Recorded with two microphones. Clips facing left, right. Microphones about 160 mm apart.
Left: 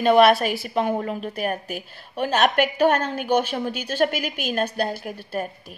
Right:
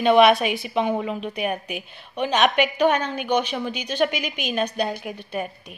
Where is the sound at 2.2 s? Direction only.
45° left (ahead or behind).